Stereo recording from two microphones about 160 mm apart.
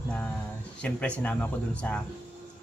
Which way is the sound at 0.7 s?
10° left (ahead or behind).